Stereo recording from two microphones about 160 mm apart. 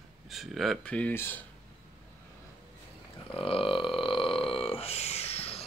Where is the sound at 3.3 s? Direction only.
35° left (ahead or behind).